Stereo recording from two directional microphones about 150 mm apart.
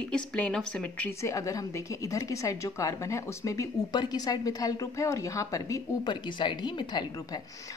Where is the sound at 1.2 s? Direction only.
20° left (ahead or behind).